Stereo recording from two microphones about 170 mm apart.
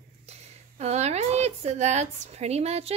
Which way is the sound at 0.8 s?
40° right (ahead or behind).